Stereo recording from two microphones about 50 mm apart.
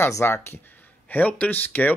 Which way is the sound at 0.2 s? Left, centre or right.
Left.